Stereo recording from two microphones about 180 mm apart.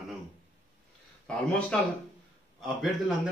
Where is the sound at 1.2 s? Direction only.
5° left (ahead or behind).